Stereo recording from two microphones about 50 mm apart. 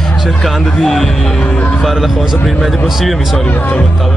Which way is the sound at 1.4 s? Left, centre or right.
Left.